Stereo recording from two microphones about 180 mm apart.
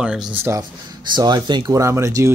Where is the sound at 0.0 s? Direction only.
5° right (ahead or behind).